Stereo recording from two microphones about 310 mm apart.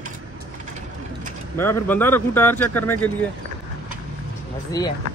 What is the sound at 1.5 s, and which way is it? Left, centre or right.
Speech, centre.